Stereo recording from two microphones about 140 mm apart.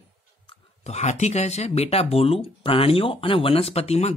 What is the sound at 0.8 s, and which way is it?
Speech, 55° left (ahead or behind).